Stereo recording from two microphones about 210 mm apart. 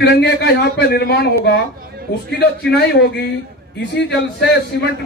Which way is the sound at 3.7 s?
55° left (ahead or behind).